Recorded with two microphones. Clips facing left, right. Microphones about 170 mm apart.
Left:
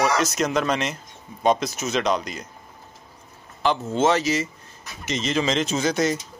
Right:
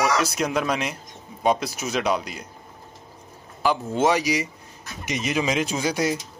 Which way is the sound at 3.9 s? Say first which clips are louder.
Left 1 dB; 15° right (ahead or behind).